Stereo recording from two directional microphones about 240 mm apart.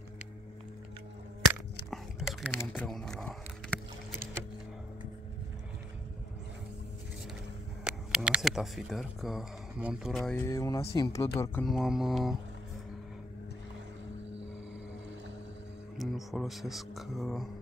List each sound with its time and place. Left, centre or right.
1.9 s whispering: centre
2.5 s speech: centre
7.8 s speech: centre
10.8 s speech: left
11.1 s speech: centre
16.0 s speech: centre